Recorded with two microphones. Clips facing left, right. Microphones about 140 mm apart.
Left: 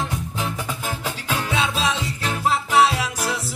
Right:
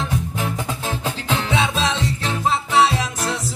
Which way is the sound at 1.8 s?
10° left (ahead or behind).